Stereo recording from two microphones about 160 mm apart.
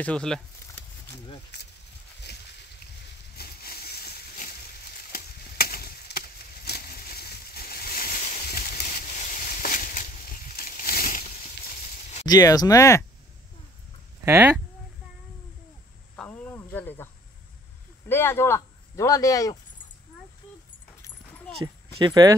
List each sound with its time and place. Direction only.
0.0 s speech: 5° left (ahead or behind)
1.5 s speech: 90° left
3.3 s a sound: 70° left (ahead or behind)
5.1 s chop: 70° left (ahead or behind); by 8.4 s 55° left (ahead or behind)
8.5 s a sound: 60° left (ahead or behind)
12.3 s speech: 25° left (ahead or behind)
14.2 s speech: 15° right (ahead or behind)
16.2 s cricket: 10° left (ahead or behind)
18.0 s speech: 15° left (ahead or behind)
21.9 s speech: 25° right (ahead or behind)